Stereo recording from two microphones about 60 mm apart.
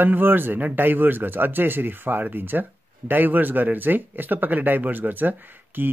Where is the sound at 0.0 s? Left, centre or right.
Right.